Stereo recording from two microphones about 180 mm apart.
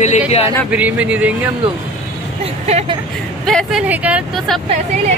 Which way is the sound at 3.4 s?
Centre (ahead or behind).